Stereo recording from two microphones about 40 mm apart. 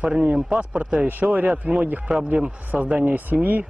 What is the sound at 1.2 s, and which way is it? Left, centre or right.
Speech, right.